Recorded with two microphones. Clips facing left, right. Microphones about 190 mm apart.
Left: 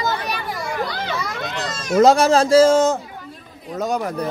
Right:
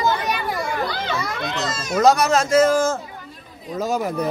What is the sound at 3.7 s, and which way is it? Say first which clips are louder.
Speech: even; centre (ahead or behind).